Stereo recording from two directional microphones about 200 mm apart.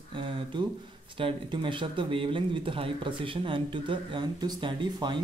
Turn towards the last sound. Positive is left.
turn(degrees=-25)  # may be behind; listen again after turning